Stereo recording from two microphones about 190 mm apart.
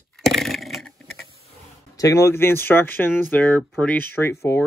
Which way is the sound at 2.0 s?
15° left (ahead or behind).